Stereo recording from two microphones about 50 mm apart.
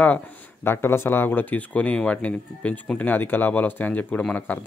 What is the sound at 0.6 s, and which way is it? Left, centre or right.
Speech, left.